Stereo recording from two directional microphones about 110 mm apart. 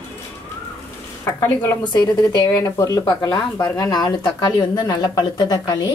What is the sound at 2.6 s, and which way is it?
Speech, 30° left (ahead or behind).